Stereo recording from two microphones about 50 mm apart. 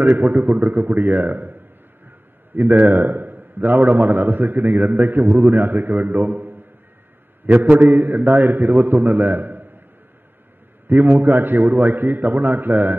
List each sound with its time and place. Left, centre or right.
0.1 s a man's voice: right
2.0 s a sound: right
3.0 s a man's voice: right
10.9 s a man's voice: right